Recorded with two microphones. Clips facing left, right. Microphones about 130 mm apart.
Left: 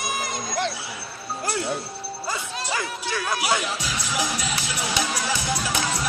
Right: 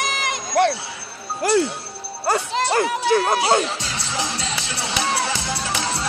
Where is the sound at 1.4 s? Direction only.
90° right.